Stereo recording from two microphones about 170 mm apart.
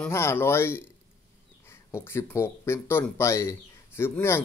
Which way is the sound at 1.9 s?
15° left (ahead or behind).